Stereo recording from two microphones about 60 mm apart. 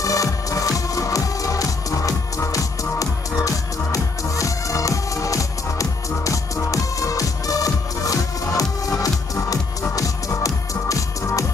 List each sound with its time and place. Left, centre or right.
0.0 s music: left